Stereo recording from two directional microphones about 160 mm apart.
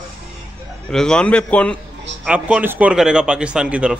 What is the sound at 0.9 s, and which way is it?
Speech, 5° left (ahead or behind).